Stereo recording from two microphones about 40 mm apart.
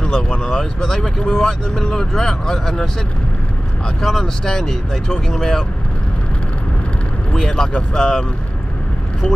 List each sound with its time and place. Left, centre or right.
0.0 s speech: left
4.0 s speech: centre
7.4 s speech: centre